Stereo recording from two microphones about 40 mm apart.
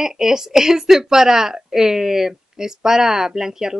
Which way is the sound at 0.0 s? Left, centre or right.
Centre.